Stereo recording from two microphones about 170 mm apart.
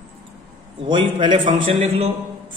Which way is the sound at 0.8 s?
30° right (ahead or behind).